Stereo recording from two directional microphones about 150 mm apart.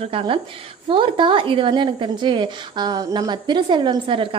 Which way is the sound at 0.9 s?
35° right (ahead or behind).